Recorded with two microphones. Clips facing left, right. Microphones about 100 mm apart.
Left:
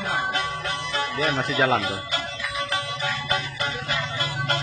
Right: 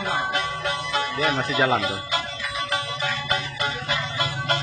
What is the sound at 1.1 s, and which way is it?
Speech, centre (ahead or behind).